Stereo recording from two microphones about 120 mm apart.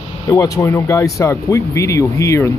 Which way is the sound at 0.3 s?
25° left (ahead or behind).